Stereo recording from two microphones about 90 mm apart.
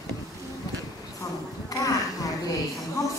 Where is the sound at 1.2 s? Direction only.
40° left (ahead or behind).